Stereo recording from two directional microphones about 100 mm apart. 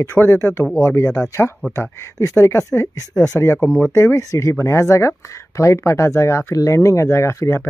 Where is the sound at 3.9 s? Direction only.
35° left (ahead or behind).